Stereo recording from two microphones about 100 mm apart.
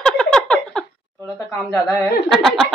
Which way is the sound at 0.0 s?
5° left (ahead or behind).